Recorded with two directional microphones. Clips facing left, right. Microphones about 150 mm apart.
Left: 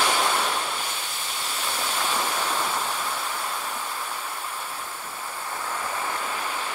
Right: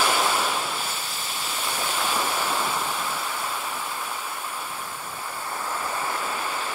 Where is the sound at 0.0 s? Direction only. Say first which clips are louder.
Right 1 dB; 5° right (ahead or behind).